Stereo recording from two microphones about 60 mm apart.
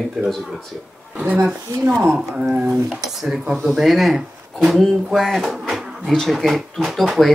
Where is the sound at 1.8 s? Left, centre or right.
Right.